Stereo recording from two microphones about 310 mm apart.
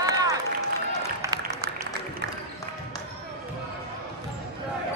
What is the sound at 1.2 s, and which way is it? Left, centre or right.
Music, centre.